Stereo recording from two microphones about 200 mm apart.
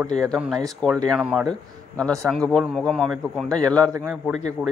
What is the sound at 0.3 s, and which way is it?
A man's voice, centre (ahead or behind).